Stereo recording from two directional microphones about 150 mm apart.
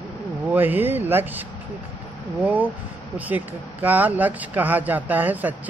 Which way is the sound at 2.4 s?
10° right (ahead or behind).